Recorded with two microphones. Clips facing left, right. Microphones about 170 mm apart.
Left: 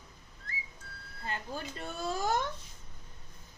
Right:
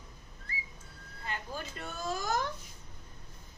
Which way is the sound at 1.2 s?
30° left (ahead or behind).